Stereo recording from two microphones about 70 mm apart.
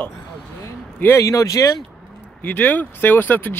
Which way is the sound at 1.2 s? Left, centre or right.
Left.